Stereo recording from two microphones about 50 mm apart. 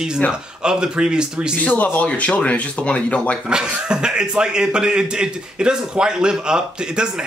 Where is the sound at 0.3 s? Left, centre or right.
Centre.